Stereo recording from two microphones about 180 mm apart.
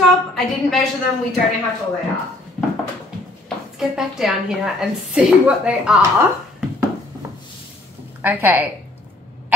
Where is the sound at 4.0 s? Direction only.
Centre (ahead or behind).